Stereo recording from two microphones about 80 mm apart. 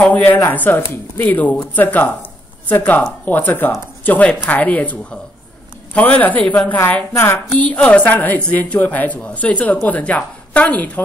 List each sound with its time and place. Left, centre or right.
0.0 s a woman's voice: left